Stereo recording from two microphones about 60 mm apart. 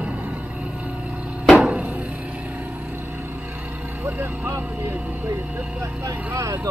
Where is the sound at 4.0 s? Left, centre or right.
Right.